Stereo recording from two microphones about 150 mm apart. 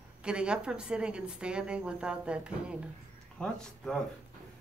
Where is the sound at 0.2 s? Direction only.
5° right (ahead or behind).